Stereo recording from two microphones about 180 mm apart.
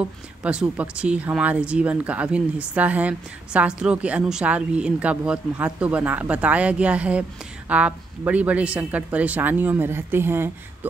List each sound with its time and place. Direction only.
0.0 s speech: 5° right (ahead or behind)